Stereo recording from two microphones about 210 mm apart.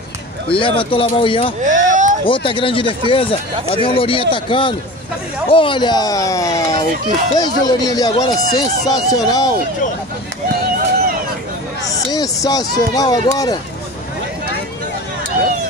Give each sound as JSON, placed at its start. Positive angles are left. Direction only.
{"t": 0.5, "sound": "speech", "side_deg": 25}
{"t": 1.7, "sound": "a sound", "side_deg": -35}
{"t": 2.2, "sound": "speech", "side_deg": 25}
{"t": 12.1, "sound": "speech", "side_deg": 20}